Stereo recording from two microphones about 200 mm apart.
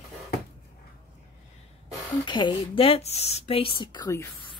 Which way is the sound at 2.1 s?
20° left (ahead or behind).